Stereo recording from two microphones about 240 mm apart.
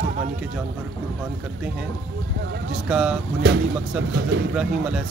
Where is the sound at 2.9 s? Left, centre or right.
Centre.